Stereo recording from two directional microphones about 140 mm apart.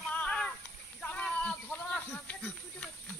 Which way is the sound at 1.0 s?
10° left (ahead or behind).